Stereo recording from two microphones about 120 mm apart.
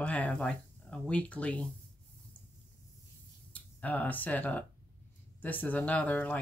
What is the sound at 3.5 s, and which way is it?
Speech, 10° left (ahead or behind).